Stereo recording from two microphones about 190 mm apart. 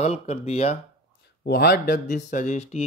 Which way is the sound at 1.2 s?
60° left (ahead or behind).